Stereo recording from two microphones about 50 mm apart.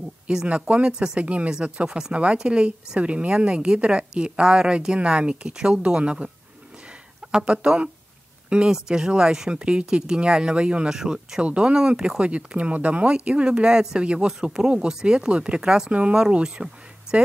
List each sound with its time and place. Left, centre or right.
0.5 s speech: right
11.0 s speech: centre